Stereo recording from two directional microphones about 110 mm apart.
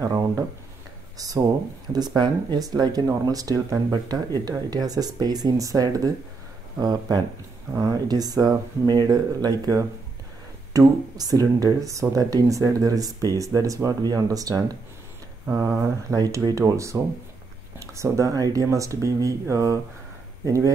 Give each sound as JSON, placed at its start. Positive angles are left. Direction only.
{"t": 1.1, "sound": "speech", "side_deg": -35}